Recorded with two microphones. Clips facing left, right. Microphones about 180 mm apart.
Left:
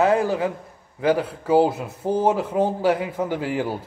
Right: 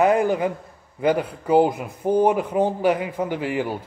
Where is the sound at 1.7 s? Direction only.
15° right (ahead or behind).